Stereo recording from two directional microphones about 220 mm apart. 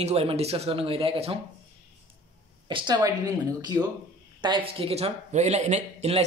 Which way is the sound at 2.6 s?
20° right (ahead or behind).